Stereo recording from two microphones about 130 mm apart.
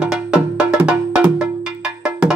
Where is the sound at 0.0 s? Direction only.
5° right (ahead or behind).